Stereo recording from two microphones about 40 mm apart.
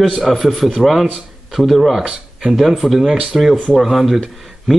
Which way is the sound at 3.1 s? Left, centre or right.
Centre.